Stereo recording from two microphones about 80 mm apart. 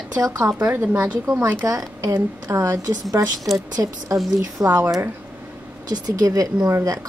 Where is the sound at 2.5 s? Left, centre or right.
Right.